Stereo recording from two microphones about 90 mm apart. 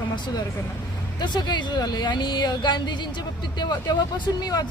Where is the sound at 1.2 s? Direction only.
55° left (ahead or behind).